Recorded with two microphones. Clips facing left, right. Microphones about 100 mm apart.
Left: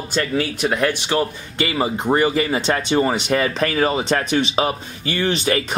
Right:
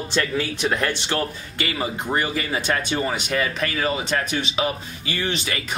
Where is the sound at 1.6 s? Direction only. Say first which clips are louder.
Left 6 dB; 30° left (ahead or behind).